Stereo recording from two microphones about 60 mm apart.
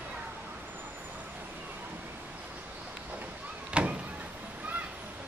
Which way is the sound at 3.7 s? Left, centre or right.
Right.